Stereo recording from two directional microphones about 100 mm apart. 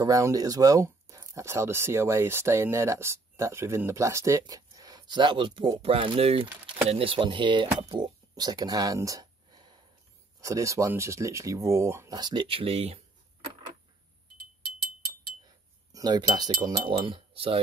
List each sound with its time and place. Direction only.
0.0 s speech: 35° right (ahead or behind); by 5.7 s 55° right (ahead or behind)
5.8 s speech: 65° right (ahead or behind); by 9.7 s 45° right (ahead or behind)
10.4 s speech: 30° right (ahead or behind)
12.1 s speech: 45° right (ahead or behind)
12.4 s speech: 70° right (ahead or behind)
15.9 s speech: 45° right (ahead or behind)
16.9 s speech: 65° right (ahead or behind)